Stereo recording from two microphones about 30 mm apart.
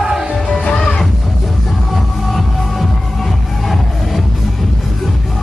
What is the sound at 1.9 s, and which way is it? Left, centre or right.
Music, centre.